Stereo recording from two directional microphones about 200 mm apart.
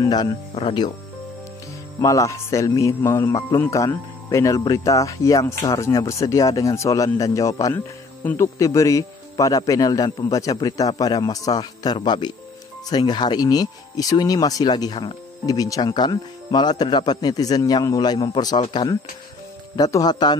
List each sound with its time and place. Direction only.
0.0 s speech: 20° left (ahead or behind)
2.0 s speech: 15° left (ahead or behind)